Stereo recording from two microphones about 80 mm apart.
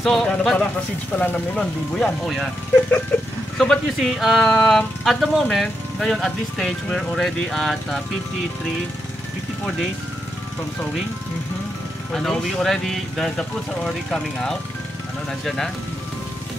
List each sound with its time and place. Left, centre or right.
0.0 s speech: centre
2.2 s speech: centre
3.5 s speech: centre
12.1 s speech: centre